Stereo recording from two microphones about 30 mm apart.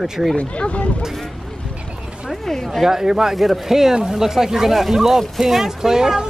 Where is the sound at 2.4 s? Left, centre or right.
Centre.